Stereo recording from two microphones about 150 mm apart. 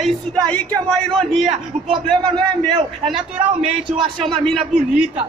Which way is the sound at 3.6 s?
35° right (ahead or behind).